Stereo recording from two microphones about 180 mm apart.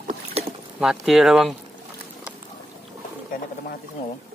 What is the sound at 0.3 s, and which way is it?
Rowboat, 35° right (ahead or behind).